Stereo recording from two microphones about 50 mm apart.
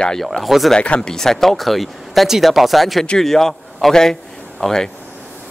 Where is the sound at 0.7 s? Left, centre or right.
Left.